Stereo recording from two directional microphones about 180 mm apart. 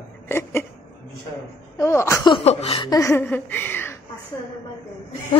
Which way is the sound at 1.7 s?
15° left (ahead or behind).